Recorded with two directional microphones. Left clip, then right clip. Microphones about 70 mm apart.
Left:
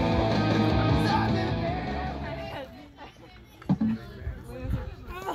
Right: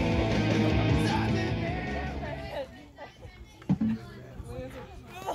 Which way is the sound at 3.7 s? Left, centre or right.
Left.